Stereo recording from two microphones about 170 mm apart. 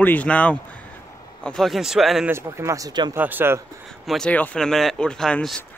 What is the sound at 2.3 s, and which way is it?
Speech, 15° right (ahead or behind).